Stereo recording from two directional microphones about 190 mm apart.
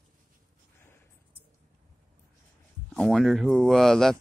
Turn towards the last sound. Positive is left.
turn(degrees=0)  # may be behind; listen again after turning